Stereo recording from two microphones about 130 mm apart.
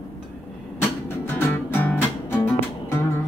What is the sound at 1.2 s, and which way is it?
Music, 15° left (ahead or behind).